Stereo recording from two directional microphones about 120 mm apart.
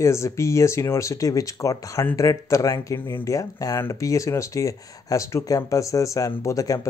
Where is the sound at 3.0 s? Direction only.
15° left (ahead or behind).